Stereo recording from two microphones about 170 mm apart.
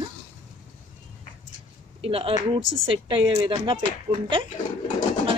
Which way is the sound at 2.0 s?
35° right (ahead or behind).